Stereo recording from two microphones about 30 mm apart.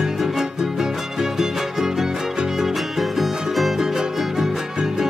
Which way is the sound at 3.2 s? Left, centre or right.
Centre.